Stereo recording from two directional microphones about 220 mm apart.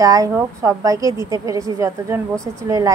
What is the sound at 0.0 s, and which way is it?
A woman's voice, 15° right (ahead or behind).